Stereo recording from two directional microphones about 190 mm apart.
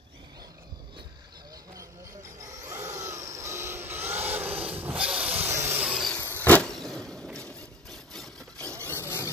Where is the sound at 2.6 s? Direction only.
15° right (ahead or behind).